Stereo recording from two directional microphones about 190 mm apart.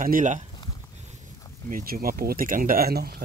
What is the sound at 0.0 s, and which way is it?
Speech, 45° right (ahead or behind).